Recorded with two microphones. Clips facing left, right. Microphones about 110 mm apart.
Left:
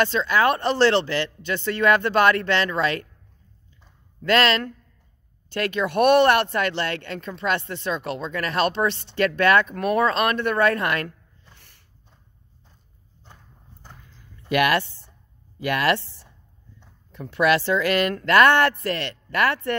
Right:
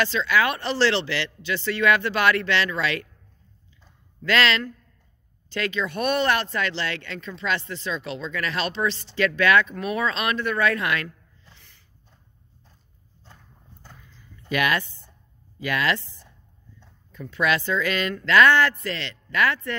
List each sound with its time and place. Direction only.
0.0 s speech: 45° left (ahead or behind)
4.3 s speech: 45° left (ahead or behind)
5.5 s speech: 55° left (ahead or behind)
9.8 s speech: 60° left (ahead or behind)
11.1 s a sound: 65° left (ahead or behind)
14.5 s speech: 60° left (ahead or behind)
17.1 s speech: 60° left (ahead or behind)